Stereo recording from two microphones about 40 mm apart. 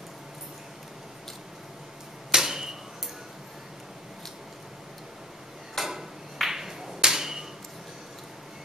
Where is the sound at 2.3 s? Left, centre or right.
Centre.